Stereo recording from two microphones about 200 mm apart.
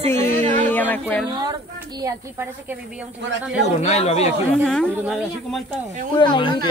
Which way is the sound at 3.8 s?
30° left (ahead or behind).